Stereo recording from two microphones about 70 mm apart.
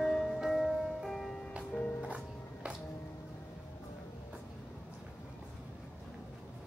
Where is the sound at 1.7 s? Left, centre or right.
Centre.